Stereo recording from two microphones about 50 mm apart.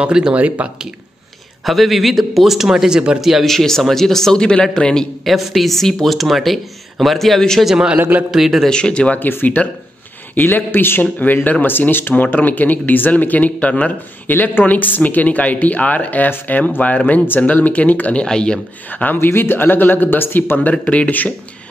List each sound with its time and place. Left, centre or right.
0.0 s speech: centre
1.7 s a man's voice: centre
3.4 s a man's voice: centre
5.2 s speech: centre
7.6 s a man's voice: centre
8.0 s a man's voice: right
8.3 s speech: centre
8.6 s speech: centre
9.2 s speech: left
14.2 s speech: left
18.2 s a man's voice: centre
19.1 s speech: left
20.7 s speech: left